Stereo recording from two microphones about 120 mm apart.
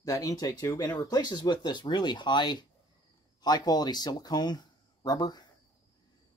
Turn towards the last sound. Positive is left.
turn(degrees=35)  # may be behind; listen again after turning